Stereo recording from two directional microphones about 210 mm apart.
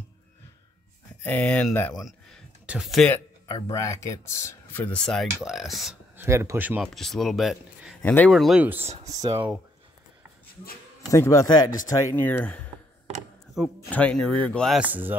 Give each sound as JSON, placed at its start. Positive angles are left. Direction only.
{"t": 1.2, "sound": "speech", "side_deg": 5}
{"t": 2.6, "sound": "speech", "side_deg": -5}
{"t": 3.4, "sound": "speech", "side_deg": 20}
{"t": 6.2, "sound": "speech", "side_deg": -15}
{"t": 6.9, "sound": "speech", "side_deg": 0}
{"t": 11.1, "sound": "speech", "side_deg": 15}
{"t": 13.7, "sound": "speech", "side_deg": 5}